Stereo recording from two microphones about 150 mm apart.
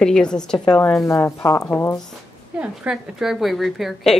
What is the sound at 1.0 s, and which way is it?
Speech, 20° left (ahead or behind).